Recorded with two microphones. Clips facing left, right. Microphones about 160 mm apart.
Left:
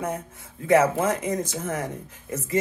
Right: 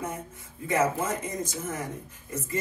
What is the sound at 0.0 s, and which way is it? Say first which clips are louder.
Speech: left 5 dB; 75° left (ahead or behind).